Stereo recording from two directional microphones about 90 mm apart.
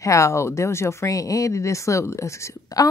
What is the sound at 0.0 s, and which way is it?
Speech, 35° left (ahead or behind).